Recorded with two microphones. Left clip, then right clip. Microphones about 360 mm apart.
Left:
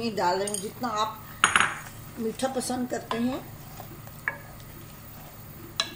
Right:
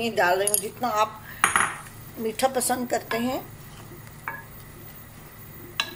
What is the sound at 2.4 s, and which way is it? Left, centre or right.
Speech, right.